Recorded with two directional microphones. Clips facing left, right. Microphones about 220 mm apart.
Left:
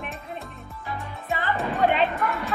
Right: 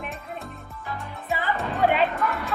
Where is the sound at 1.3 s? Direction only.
Centre (ahead or behind).